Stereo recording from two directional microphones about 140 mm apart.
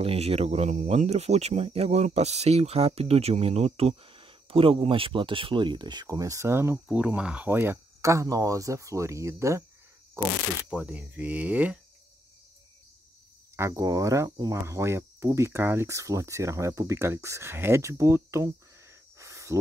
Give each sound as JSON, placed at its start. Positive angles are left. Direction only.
{"t": 0.0, "sound": "speech", "side_deg": -45}
{"t": 10.7, "sound": "speech", "side_deg": -10}
{"t": 13.6, "sound": "speech", "side_deg": -20}